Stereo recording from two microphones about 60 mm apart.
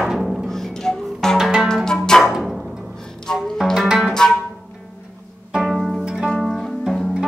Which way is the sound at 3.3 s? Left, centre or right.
Centre.